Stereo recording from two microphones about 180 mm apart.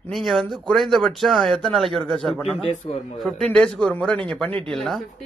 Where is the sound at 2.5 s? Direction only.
35° left (ahead or behind).